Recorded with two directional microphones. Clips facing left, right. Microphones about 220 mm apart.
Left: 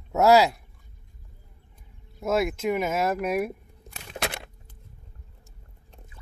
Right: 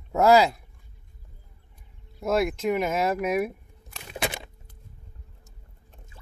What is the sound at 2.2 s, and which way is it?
Speech, centre (ahead or behind).